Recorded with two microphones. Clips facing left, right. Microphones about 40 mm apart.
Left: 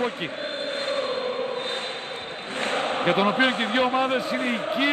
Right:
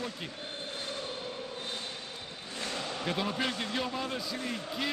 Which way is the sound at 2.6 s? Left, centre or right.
Left.